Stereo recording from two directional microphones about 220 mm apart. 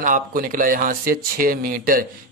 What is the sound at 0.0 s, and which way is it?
Speech, 40° right (ahead or behind).